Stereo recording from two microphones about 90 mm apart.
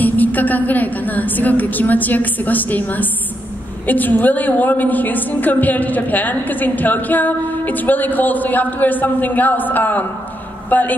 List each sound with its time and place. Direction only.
0.0 s a woman's voice: 20° left (ahead or behind)